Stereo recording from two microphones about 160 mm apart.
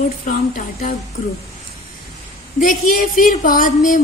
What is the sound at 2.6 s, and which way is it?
Speech, 55° left (ahead or behind).